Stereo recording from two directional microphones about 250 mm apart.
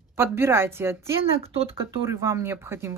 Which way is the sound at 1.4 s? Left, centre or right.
Right.